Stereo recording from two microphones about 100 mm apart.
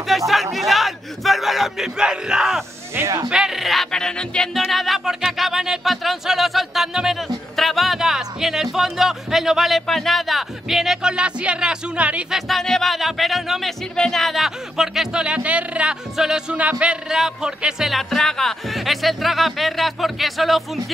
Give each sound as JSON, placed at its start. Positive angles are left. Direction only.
{"t": 0.3, "sound": "music", "side_deg": 0}
{"t": 2.9, "sound": "speech", "side_deg": -25}
{"t": 3.3, "sound": "music", "side_deg": -5}